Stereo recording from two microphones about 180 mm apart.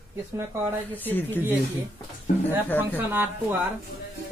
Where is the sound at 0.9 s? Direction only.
10° left (ahead or behind).